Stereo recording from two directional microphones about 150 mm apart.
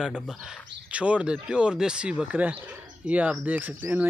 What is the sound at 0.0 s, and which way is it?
Speech, 5° right (ahead or behind).